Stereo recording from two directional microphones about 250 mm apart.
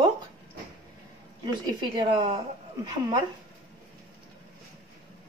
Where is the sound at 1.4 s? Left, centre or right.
Centre.